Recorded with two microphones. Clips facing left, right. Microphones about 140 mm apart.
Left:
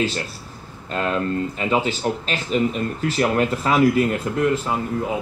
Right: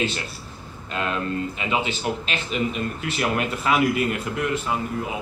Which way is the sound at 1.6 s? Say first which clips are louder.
Left 6 dB; 40° left (ahead or behind).